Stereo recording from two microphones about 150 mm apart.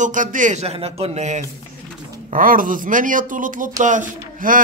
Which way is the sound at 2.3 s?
65° right (ahead or behind).